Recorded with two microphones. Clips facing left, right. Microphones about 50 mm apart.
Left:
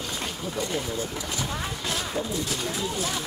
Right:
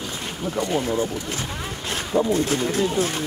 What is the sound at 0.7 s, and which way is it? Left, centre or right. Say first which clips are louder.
Speech: right 9 dB; right.